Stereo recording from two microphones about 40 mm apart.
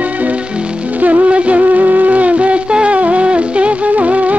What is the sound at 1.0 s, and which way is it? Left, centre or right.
Music, right.